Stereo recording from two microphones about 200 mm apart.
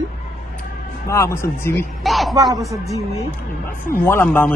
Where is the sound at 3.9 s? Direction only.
10° left (ahead or behind).